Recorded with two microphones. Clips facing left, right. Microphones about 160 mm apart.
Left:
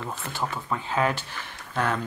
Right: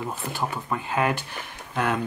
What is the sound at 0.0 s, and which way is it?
Speech, 10° right (ahead or behind).